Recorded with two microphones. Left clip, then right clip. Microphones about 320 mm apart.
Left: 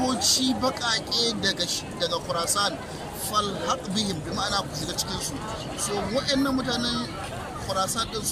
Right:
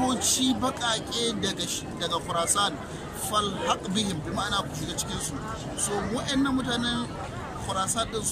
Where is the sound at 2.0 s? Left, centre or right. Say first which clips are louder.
Even; centre.